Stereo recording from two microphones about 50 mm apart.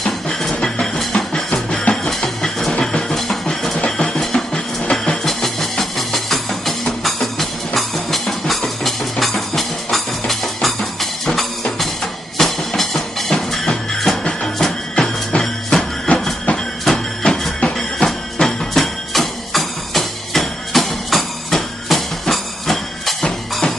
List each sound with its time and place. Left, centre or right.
0.0 s music: centre
3.8 s music: centre
16.1 s train: left
16.8 s printer: centre
17.7 s music: centre